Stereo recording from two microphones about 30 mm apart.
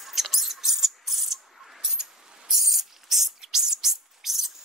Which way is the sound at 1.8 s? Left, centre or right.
Right.